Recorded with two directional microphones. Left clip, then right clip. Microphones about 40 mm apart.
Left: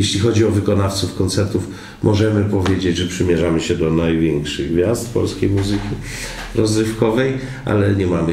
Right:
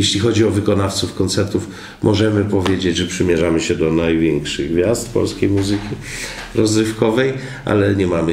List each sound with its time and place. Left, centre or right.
0.0 s speech: right